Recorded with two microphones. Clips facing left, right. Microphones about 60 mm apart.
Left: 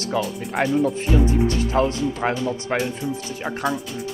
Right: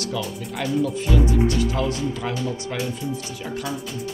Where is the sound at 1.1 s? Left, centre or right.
Left.